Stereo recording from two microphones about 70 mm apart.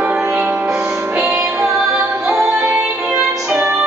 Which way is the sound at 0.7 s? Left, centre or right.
Centre.